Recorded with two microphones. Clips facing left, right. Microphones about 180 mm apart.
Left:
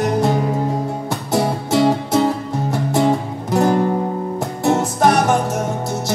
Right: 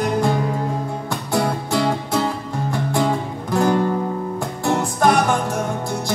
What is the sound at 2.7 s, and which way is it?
Music, 20° left (ahead or behind).